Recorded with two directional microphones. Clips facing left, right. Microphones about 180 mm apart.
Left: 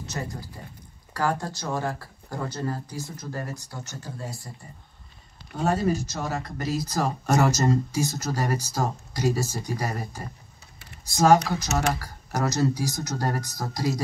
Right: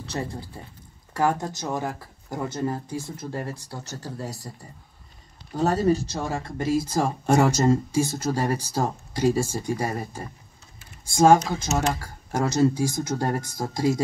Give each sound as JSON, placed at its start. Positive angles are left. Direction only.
{"t": 0.0, "sound": "speech", "side_deg": -30}
{"t": 5.6, "sound": "speech", "side_deg": -35}